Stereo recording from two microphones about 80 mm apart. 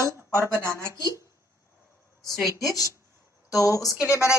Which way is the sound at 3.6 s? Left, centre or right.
Left.